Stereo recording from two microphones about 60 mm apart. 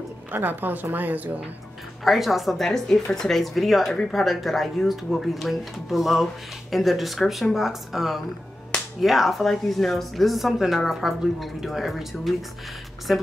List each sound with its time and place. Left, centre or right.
0.3 s a woman's voice: right
2.0 s a woman's voice: centre